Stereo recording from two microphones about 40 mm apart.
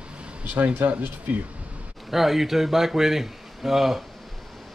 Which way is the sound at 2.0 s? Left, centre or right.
Centre.